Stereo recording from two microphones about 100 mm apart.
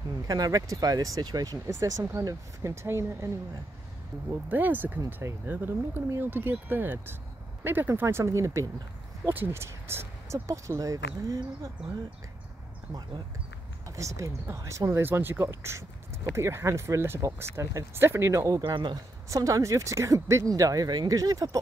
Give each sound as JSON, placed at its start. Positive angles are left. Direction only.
{"t": 0.3, "sound": "speech", "side_deg": -40}
{"t": 4.3, "sound": "speech", "side_deg": -20}
{"t": 13.8, "sound": "speech", "side_deg": -30}
{"t": 18.6, "sound": "a man's voice", "side_deg": -50}
{"t": 19.2, "sound": "speech", "side_deg": -35}